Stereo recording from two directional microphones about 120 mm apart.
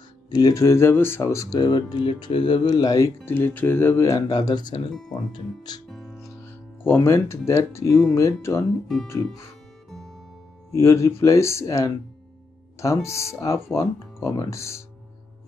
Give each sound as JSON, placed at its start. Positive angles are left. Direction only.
{"t": 0.3, "sound": "speech", "side_deg": 35}
{"t": 5.9, "sound": "music", "side_deg": 0}
{"t": 6.2, "sound": "speech", "side_deg": 20}
{"t": 9.8, "sound": "music", "side_deg": 5}
{"t": 10.7, "sound": "speech", "side_deg": 25}